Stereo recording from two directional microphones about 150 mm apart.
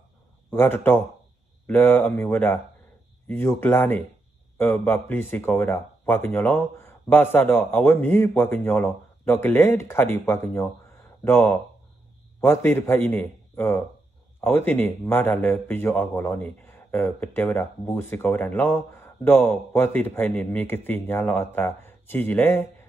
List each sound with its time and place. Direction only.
0.5 s a man's voice: 15° left (ahead or behind)